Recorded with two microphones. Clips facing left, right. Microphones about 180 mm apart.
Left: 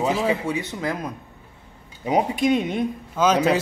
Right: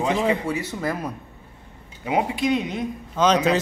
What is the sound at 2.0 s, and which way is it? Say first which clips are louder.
Speech: left 2 dB; 40° left (ahead or behind).